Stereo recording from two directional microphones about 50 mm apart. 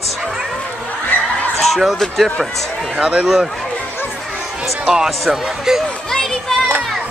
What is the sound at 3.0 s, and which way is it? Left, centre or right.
Speech, right.